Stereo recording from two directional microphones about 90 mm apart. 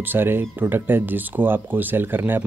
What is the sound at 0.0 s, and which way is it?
Speech, 25° right (ahead or behind).